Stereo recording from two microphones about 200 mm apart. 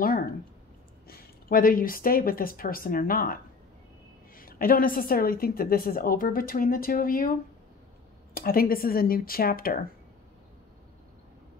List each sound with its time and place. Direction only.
1.0 s speech: 45° left (ahead or behind)
4.4 s a woman's voice: 45° left (ahead or behind)
8.4 s a woman's voice: 45° left (ahead or behind)